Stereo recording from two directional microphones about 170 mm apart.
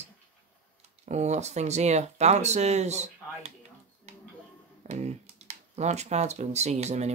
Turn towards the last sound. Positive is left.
turn(degrees=-40)  # may be behind; listen again after turning